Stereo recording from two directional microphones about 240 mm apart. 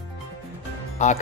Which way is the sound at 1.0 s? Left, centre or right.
Left.